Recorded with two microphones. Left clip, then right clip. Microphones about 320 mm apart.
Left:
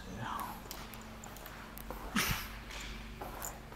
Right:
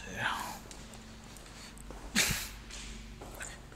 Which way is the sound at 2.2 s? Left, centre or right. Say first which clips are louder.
Right 4 dB; right.